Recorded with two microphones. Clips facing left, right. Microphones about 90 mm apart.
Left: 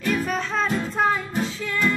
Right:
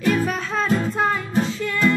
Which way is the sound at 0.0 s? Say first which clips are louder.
Right 3 dB; centre (ahead or behind).